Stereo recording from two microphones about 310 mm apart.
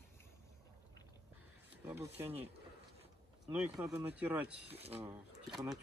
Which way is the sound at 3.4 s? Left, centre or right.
Centre.